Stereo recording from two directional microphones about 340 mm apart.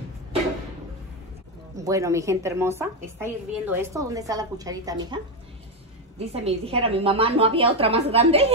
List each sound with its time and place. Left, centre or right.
1.8 s a woman's voice: centre